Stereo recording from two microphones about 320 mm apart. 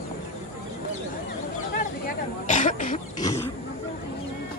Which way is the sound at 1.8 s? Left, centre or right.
Left.